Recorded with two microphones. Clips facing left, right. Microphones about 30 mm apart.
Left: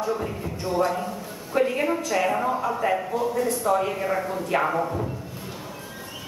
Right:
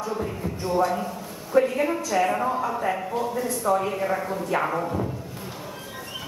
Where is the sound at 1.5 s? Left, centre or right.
Left.